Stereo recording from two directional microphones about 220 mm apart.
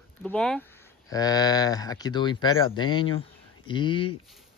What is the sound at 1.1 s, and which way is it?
Speech, 15° left (ahead or behind).